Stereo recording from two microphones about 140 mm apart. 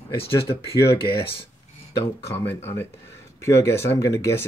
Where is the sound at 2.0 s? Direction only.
15° left (ahead or behind).